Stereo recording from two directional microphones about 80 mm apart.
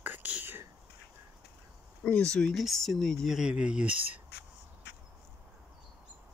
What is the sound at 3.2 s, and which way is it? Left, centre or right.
Speech, centre.